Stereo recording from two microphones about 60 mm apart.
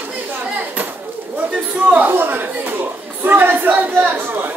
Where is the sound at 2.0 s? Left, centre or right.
Right.